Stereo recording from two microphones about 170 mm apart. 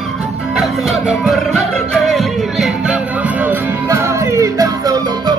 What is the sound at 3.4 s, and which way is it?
Music, 15° right (ahead or behind).